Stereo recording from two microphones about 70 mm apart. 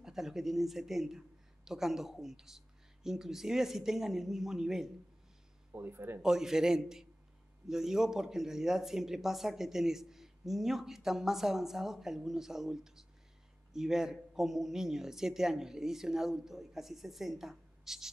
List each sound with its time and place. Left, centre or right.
0.0 s speech: centre
5.7 s speech: right
6.2 s a man's voice: centre